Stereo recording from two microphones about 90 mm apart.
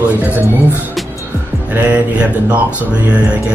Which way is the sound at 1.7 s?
20° right (ahead or behind).